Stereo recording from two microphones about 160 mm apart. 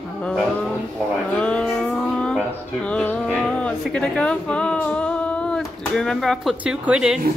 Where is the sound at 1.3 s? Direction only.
5° left (ahead or behind).